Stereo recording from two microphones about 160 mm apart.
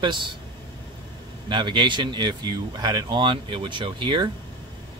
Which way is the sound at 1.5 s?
30° right (ahead or behind).